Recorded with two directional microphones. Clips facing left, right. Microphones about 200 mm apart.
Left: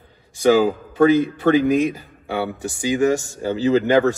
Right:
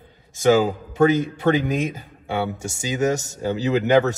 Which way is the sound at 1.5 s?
20° right (ahead or behind).